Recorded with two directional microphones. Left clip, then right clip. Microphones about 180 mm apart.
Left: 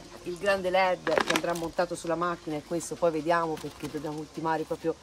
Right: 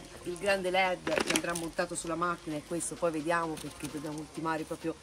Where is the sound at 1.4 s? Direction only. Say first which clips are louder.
Left 5 dB; 40° left (ahead or behind); by 3.4 s 55° left (ahead or behind).